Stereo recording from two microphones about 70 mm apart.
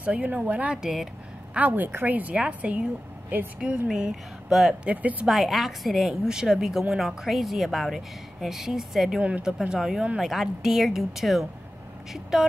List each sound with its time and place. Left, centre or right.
0.0 s a woman's voice: centre
4.1 s a woman's voice: centre
4.8 s a woman's voice: right
5.2 s a woman's voice: centre